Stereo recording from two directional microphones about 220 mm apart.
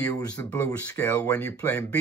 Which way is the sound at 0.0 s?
15° left (ahead or behind).